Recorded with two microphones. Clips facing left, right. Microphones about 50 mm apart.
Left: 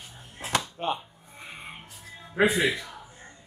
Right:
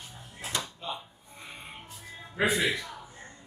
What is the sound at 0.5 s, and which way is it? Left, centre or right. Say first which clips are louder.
Music: left 8 dB; left.